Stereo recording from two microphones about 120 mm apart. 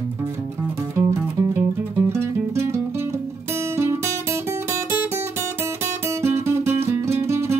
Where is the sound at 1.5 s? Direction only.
20° right (ahead or behind).